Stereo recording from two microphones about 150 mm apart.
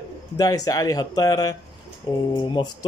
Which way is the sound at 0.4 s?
25° left (ahead or behind).